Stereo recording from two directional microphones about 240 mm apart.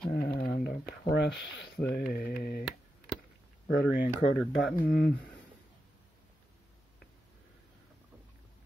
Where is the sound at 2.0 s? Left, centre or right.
Left.